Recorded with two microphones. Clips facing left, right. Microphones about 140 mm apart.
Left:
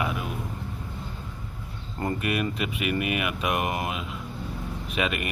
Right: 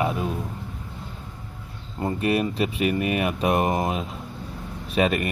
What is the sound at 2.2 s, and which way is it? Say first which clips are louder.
Speech: right 9 dB; 30° right (ahead or behind).